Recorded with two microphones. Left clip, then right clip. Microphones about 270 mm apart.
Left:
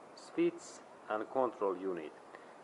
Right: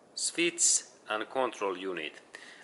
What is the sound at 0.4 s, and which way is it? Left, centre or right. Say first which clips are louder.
Speech: right 6 dB; centre.